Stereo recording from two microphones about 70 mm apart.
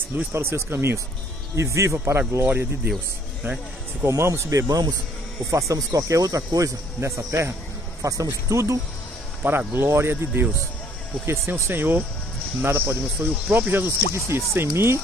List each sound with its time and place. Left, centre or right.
0.1 s speech: right
2.4 s speech: right
4.0 s speech: right
5.5 s speech: right
9.4 s speech: right